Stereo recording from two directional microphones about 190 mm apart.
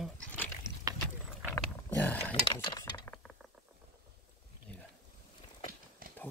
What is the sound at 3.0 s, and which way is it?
Mechanisms, 10° left (ahead or behind).